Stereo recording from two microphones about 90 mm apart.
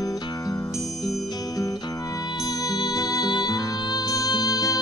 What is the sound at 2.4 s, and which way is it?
Music, 45° left (ahead or behind).